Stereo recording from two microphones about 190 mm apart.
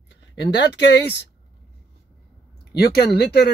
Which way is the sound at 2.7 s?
55° left (ahead or behind).